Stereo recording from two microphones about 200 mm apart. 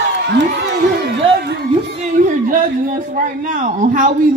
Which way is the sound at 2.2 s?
40° right (ahead or behind).